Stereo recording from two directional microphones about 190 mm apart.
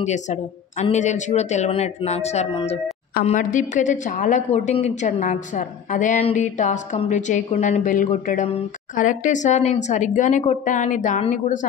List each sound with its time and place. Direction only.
0.0 s a woman's voice: 35° left (ahead or behind)